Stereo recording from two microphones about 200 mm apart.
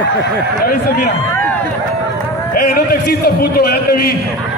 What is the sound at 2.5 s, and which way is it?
A man's voice, 50° left (ahead or behind).